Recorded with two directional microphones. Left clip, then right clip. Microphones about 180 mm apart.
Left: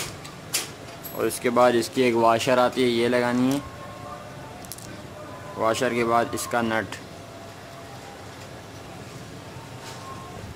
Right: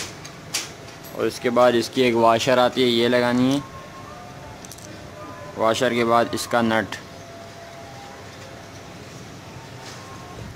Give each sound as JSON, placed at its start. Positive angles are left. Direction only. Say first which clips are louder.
{"t": 1.1, "sound": "speech", "louder": "right 2 dB", "side_deg": -15}
{"t": 5.6, "sound": "a man's voice", "louder": "right 3 dB", "side_deg": -25}